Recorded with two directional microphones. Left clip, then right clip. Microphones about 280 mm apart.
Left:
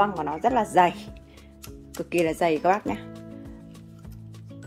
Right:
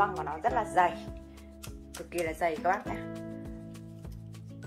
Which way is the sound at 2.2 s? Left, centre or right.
Left.